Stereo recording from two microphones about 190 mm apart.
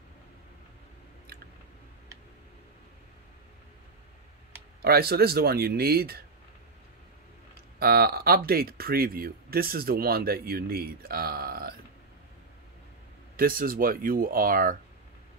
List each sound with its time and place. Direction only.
4.8 s speech: 55° right (ahead or behind)
7.8 s speech: 55° right (ahead or behind)
13.4 s speech: 50° right (ahead or behind)